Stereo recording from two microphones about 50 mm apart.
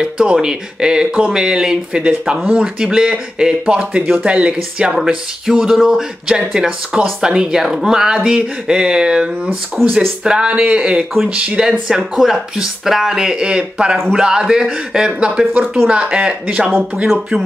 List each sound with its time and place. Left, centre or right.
0.0 s speech: centre
11.9 s speech: centre